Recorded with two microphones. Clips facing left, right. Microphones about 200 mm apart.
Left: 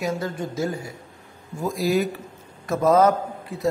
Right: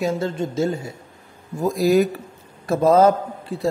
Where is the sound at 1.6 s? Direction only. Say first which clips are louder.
Right 5 dB; 40° right (ahead or behind).